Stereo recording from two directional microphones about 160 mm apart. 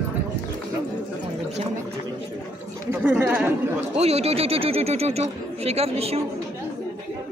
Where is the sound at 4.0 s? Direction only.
40° right (ahead or behind).